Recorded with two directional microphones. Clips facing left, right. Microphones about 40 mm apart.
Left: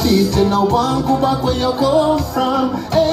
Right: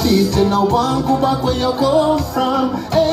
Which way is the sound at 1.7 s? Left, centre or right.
Right.